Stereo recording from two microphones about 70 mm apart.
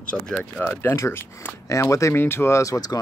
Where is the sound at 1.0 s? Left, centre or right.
Left.